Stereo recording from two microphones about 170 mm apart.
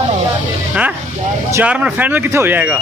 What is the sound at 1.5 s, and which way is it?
Speech, 10° right (ahead or behind).